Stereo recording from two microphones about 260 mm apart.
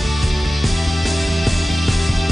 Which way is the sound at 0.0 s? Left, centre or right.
Centre.